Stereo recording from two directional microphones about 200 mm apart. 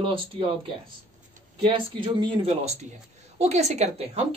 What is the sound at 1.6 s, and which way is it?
A woman's voice, 25° right (ahead or behind).